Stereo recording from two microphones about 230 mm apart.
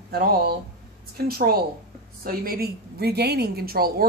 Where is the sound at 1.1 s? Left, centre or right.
Right.